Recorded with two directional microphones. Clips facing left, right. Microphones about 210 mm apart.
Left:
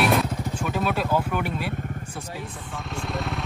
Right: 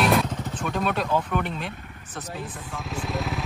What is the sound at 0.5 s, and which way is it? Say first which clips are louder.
Vehicle: even; 5° left (ahead or behind).